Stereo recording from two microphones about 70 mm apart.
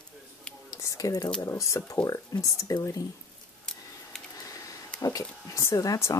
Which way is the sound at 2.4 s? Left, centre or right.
Left.